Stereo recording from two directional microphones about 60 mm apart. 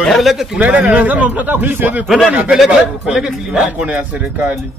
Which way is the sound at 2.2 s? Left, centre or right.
Centre.